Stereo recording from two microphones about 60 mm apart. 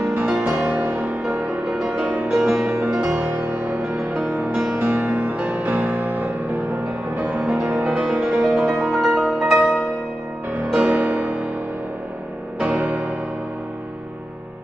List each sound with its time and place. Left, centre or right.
0.1 s music: right
2.3 s music: centre
4.4 s music: centre
4.7 s music: right
5.0 s music: right
7.2 s music: right
8.1 s music: centre
10.7 s music: centre
12.6 s music: right